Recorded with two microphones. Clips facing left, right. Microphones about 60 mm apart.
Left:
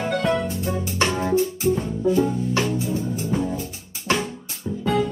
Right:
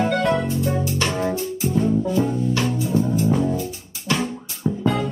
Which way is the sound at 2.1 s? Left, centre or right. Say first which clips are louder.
Left 1 dB; centre.